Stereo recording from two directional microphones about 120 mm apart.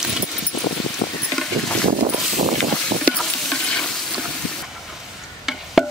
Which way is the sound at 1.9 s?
85° right.